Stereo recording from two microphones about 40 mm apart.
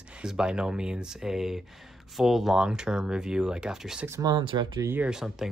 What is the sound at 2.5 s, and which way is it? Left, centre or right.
Speech, right.